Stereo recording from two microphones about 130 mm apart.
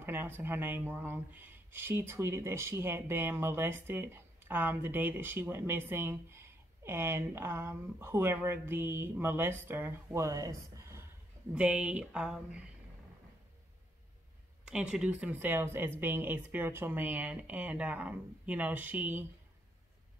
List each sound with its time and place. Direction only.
0.0 s speech: 15° right (ahead or behind)
11.5 s speech: 10° right (ahead or behind)
14.6 s speech: 5° right (ahead or behind)